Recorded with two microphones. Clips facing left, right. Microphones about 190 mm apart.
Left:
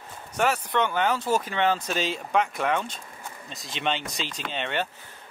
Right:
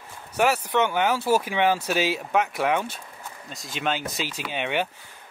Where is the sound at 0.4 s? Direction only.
10° right (ahead or behind).